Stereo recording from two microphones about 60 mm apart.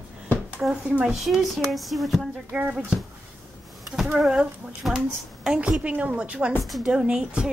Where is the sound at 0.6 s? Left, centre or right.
Centre.